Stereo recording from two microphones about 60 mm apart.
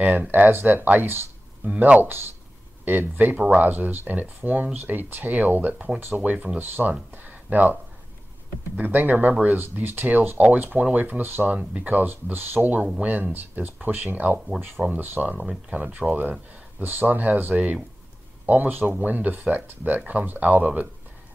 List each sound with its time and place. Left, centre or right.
0.0 s speech: right
1.7 s speech: right
8.7 s speech: right